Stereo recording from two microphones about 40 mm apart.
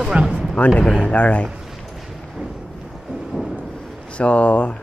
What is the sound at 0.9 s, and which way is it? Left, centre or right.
Speech, left.